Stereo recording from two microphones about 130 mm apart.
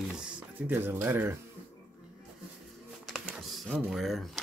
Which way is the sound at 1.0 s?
15° right (ahead or behind).